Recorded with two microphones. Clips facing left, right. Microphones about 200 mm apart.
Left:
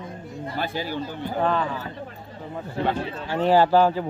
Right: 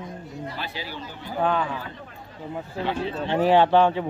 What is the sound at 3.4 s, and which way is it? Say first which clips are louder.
Speech: even; centre (ahead or behind).